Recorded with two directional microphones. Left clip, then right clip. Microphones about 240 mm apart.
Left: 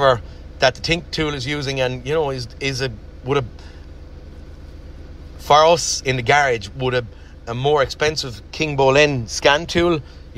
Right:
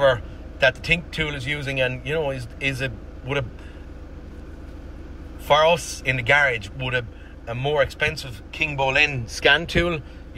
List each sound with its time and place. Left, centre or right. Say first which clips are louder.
0.0 s speech: left 3 dB; centre
5.4 s speech: left 5 dB; centre
8.3 s speech: left 2 dB; left
9.1 s speech: left 2 dB; centre